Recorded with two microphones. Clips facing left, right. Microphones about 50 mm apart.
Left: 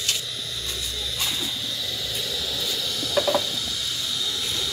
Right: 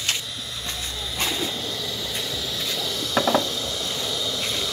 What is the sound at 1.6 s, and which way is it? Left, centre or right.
Vehicle, centre.